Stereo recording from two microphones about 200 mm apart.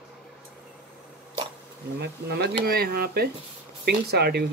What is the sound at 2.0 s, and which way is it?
Speech, 55° right (ahead or behind).